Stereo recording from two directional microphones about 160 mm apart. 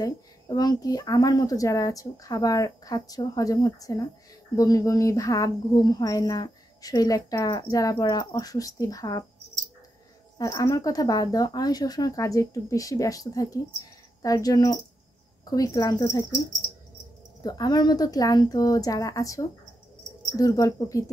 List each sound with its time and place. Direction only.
0.0 s speech: 25° left (ahead or behind)
10.3 s speech: 20° left (ahead or behind)